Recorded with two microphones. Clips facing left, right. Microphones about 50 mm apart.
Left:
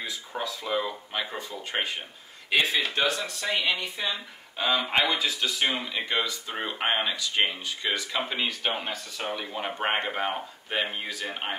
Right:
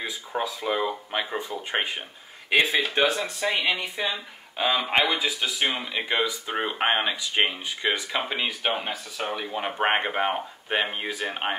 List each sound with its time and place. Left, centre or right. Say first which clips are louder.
0.0 s speech: right 4 dB; centre